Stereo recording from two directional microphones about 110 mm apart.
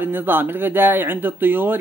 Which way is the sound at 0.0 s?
20° right (ahead or behind).